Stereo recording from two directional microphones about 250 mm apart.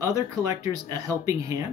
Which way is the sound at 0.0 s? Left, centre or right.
Centre.